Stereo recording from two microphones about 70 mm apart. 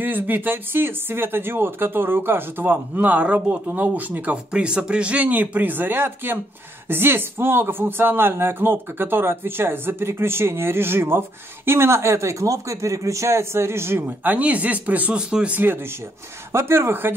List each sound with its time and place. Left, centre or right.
0.0 s speech: right
15.6 s speech: right